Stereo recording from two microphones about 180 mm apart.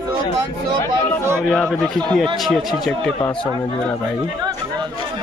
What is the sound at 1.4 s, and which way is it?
Speech, centre (ahead or behind).